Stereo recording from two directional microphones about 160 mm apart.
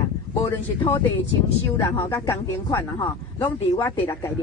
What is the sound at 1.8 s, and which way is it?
Speech, 20° left (ahead or behind).